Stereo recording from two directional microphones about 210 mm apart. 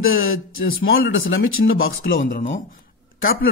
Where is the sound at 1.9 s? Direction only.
45° left (ahead or behind).